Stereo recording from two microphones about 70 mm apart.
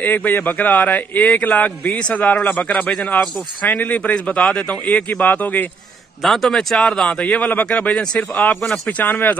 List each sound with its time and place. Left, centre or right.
0.0 s a man's voice: left
6.2 s a man's voice: centre
8.5 s speech: centre
8.8 s a man's voice: left